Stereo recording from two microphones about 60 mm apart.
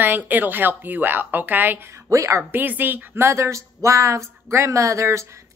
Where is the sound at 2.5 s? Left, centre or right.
Right.